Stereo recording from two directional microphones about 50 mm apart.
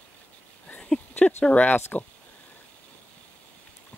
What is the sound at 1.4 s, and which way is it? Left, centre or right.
Speech, left.